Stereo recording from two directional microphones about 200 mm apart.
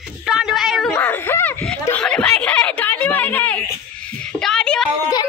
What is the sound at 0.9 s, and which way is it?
Speech, 10° left (ahead or behind).